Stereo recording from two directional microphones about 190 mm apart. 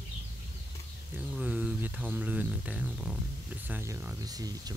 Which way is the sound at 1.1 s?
5° right (ahead or behind).